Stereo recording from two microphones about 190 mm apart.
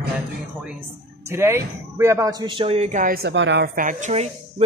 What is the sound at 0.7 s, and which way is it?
Speech, 10° right (ahead or behind).